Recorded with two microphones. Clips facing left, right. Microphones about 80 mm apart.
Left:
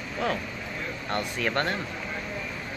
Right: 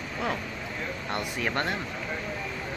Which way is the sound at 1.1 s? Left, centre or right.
Centre.